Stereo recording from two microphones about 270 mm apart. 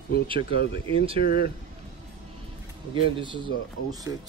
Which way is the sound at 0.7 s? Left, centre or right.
Right.